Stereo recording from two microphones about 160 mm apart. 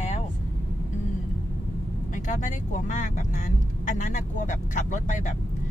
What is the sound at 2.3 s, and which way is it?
Speech, 50° left (ahead or behind).